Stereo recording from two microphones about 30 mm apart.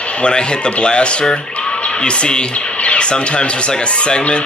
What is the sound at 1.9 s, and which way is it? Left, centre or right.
Speech, left.